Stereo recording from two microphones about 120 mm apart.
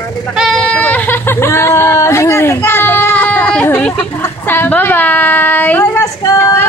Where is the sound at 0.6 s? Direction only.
10° left (ahead or behind).